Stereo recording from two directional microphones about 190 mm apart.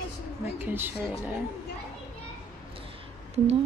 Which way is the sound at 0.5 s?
10° right (ahead or behind).